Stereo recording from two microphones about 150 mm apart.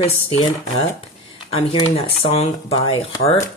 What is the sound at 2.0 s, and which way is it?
Speech, 40° left (ahead or behind).